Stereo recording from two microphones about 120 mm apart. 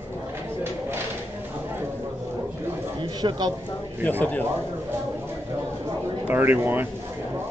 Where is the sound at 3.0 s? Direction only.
40° right (ahead or behind).